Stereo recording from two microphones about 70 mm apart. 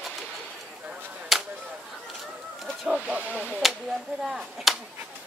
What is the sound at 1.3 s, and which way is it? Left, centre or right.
Chop, centre.